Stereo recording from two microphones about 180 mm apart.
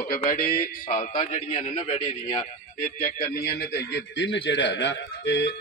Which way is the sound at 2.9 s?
55° left (ahead or behind).